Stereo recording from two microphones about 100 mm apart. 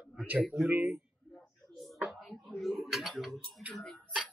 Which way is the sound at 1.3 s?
Centre (ahead or behind).